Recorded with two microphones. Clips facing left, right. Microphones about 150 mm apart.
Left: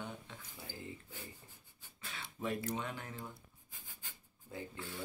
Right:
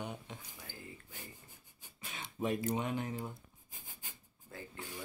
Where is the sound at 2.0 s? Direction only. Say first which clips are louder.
Right 4 dB; 20° right (ahead or behind).